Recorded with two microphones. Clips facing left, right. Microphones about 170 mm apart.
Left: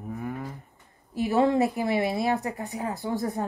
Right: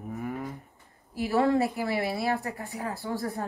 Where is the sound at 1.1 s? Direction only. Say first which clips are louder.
Left 2 dB; 20° left (ahead or behind).